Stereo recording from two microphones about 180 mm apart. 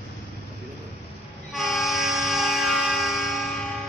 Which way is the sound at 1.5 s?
Centre (ahead or behind).